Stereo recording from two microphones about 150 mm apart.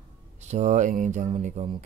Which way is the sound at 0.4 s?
50° right (ahead or behind).